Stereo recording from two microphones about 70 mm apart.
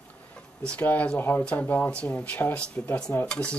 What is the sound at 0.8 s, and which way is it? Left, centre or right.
Speech, left.